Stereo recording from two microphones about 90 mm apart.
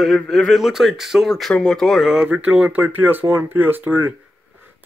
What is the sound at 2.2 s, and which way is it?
Speech, 15° right (ahead or behind).